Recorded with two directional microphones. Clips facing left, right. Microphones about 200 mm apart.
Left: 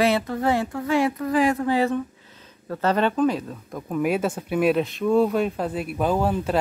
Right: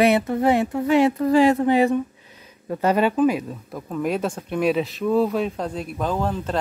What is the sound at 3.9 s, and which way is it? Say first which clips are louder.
Speech: left 1 dB; 5° left (ahead or behind).